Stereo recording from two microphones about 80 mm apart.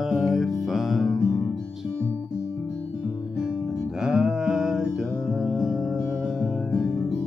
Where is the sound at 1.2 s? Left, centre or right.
Left.